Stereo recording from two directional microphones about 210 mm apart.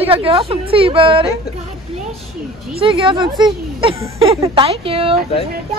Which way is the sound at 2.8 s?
25° right (ahead or behind).